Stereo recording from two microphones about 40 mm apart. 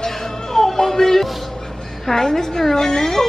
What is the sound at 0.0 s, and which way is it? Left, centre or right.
Music, centre.